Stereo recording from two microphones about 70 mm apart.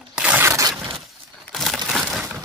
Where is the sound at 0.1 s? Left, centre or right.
Centre.